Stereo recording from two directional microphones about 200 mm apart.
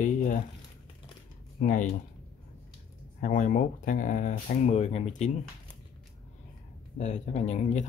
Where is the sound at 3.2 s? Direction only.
40° left (ahead or behind).